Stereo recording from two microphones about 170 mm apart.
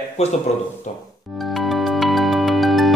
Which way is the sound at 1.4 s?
Centre (ahead or behind).